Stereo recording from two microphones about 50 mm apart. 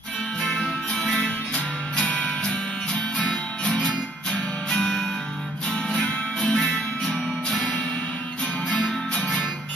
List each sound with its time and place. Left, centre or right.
1.2 s music: left
3.7 s music: left
7.1 s music: centre
8.6 s music: left